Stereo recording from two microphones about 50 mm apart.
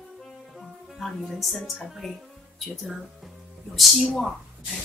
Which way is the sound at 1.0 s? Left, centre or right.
Centre.